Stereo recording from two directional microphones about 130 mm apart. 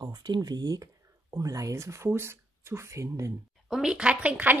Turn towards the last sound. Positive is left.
turn(degrees=-10)  # may be behind; listen again after turning